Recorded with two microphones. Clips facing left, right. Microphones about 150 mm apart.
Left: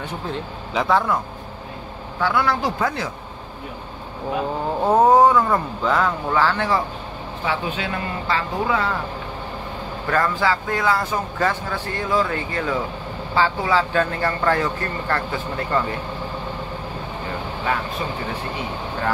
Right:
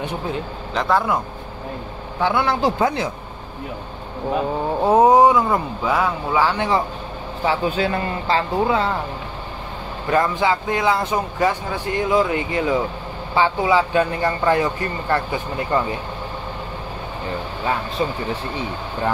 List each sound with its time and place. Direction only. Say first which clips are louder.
0.7 s a man's voice: even; centre (ahead or behind)
2.1 s speech: right 1 dB; 20° right (ahead or behind)
4.8 s speech: right 1 dB; 10° right (ahead or behind)
7.4 s speech: right 5 dB; 35° right (ahead or behind)
10.0 s speech: right 2 dB; 20° right (ahead or behind)